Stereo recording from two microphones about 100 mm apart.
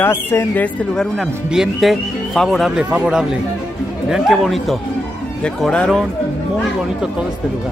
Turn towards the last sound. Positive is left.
turn(degrees=5)  # may be behind; listen again after turning